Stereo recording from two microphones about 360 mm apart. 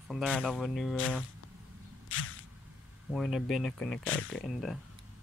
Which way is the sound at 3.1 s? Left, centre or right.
Centre.